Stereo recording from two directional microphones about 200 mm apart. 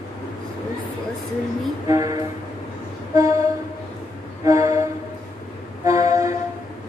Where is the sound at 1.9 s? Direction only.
15° right (ahead or behind).